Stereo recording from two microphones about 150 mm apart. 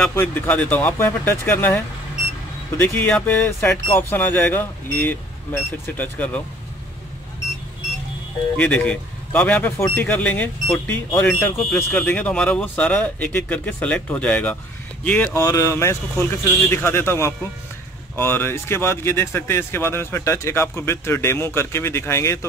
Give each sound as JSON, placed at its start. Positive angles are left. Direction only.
{"t": 0.1, "sound": "speech", "side_deg": 15}
{"t": 2.8, "sound": "speech", "side_deg": 10}
{"t": 8.5, "sound": "speech", "side_deg": 10}
{"t": 15.3, "sound": "speech", "side_deg": 20}